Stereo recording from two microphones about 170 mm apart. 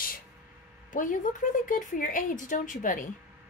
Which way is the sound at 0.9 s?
50° left (ahead or behind).